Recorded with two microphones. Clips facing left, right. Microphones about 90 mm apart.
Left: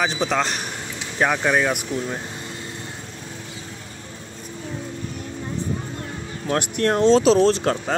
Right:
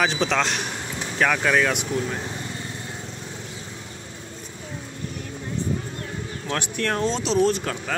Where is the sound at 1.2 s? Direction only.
15° left (ahead or behind).